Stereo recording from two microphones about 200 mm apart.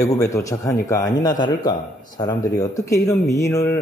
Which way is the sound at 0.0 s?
15° left (ahead or behind).